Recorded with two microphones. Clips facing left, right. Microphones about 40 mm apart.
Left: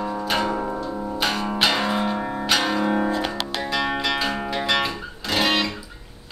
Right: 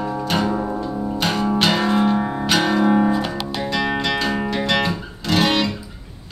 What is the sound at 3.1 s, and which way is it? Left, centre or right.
Music, left.